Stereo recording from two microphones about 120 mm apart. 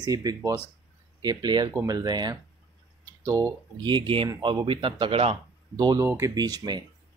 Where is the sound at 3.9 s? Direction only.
45° right (ahead or behind).